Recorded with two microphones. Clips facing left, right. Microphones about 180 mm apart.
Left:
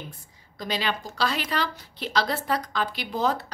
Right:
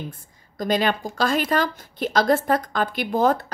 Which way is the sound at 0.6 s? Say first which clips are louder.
Right 7 dB; 50° right (ahead or behind).